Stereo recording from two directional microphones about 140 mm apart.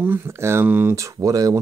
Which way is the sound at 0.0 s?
15° right (ahead or behind).